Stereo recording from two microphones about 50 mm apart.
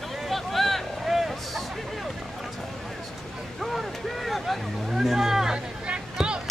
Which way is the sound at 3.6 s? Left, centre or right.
Centre.